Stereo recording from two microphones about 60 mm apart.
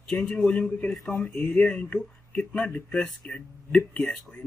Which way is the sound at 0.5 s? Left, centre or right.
Left.